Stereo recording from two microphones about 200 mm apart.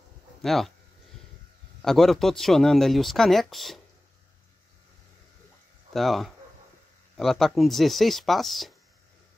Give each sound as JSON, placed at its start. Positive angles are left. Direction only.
{"t": 0.4, "sound": "speech", "side_deg": 0}
{"t": 1.8, "sound": "speech", "side_deg": 0}
{"t": 5.9, "sound": "speech", "side_deg": 0}